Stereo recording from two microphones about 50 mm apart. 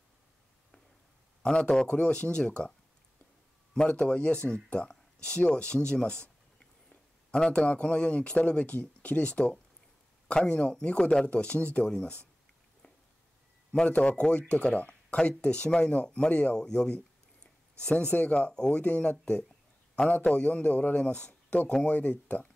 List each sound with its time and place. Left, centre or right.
1.4 s speech: centre
3.7 s a man's voice: left
13.7 s speech: left
16.6 s a sound: centre
18.1 s speech: left